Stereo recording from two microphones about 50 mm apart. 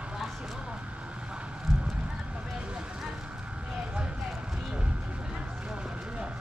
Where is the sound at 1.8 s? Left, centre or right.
Right.